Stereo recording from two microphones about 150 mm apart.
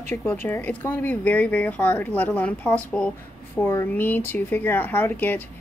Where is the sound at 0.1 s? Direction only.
15° left (ahead or behind).